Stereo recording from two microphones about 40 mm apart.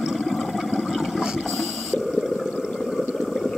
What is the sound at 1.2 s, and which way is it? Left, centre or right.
Toilet flush, centre.